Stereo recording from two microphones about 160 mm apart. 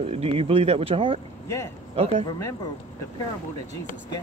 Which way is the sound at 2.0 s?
40° right (ahead or behind).